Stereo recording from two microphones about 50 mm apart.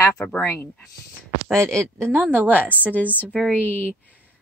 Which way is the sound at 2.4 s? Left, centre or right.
Right.